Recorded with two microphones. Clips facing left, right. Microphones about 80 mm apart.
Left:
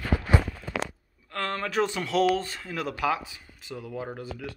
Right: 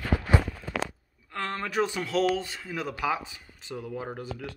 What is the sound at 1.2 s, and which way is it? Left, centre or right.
Speech, centre.